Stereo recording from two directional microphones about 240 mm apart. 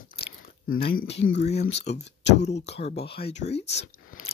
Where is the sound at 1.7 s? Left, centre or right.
Left.